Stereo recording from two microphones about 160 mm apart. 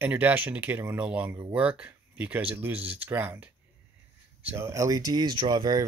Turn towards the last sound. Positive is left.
turn(degrees=-25)  # may be behind; listen again after turning